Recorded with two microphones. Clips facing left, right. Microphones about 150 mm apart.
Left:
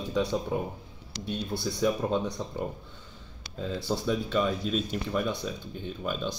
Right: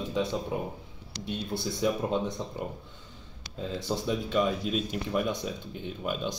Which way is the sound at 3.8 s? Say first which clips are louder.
Left 1 dB; 15° right (ahead or behind).